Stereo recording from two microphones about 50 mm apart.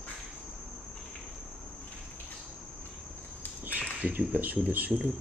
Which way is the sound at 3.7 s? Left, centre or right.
Right.